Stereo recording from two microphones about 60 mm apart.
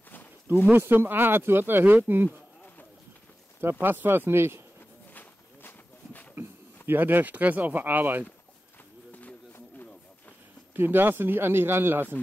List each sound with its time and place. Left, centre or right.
0.7 s speech: right
3.8 s speech: right
5.1 s a sound: left
6.9 s speech: right
10.7 s speech: right